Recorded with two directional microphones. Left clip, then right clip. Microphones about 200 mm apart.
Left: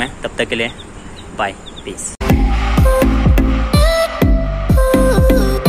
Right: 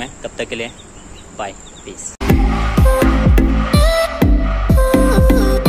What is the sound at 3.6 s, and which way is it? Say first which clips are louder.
Music: left 1 dB; 50° left (ahead or behind).